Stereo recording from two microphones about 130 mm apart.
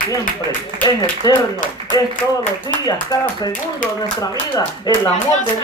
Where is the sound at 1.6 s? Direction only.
90° left.